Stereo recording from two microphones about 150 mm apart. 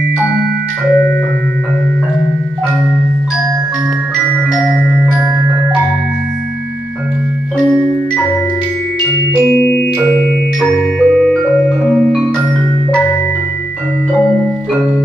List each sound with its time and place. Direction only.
0.8 s music: 5° left (ahead or behind)
10.6 s music: 5° left (ahead or behind)